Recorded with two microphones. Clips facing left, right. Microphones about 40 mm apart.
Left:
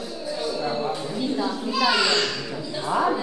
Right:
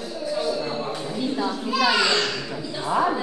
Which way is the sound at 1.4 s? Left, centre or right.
Centre.